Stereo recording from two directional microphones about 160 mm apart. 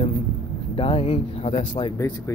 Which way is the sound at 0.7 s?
35° left (ahead or behind).